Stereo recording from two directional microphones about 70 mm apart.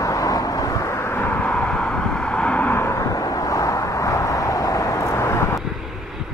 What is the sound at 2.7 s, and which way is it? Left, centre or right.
Vehicle, left.